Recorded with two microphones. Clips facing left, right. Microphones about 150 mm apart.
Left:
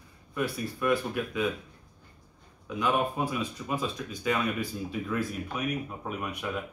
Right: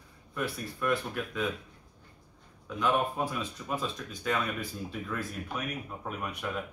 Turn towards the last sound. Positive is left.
turn(degrees=0)  # may be behind; listen again after turning